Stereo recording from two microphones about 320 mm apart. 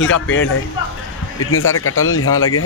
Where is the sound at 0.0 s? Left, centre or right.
Left.